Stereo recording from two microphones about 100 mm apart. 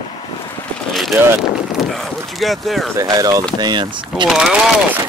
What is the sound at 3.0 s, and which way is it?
Speech, 35° right (ahead or behind).